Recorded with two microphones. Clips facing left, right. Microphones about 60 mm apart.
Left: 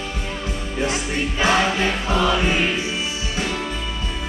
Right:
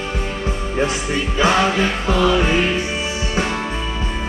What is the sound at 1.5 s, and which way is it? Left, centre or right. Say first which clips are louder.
Music: right 2 dB; right.